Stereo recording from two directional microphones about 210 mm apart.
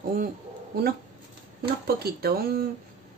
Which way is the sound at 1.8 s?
50° right (ahead or behind).